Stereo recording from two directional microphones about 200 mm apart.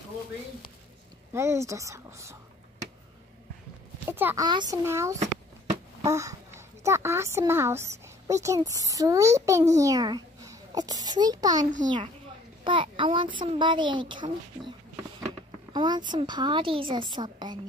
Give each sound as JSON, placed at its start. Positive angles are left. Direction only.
{"t": 1.3, "sound": "speech", "side_deg": -15}
{"t": 4.1, "sound": "a child's voice", "side_deg": -10}
{"t": 12.6, "sound": "a woman's voice", "side_deg": -25}
{"t": 15.7, "sound": "a woman's voice", "side_deg": -20}